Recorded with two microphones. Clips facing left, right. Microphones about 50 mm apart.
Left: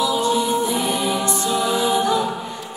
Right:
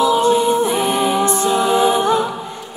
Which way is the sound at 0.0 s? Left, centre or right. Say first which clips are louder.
Right 6 dB; right.